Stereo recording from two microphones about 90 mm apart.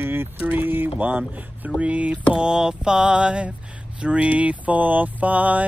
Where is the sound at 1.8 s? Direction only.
15° right (ahead or behind).